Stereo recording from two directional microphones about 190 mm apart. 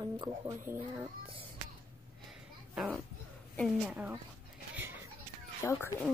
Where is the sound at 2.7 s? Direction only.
5° right (ahead or behind).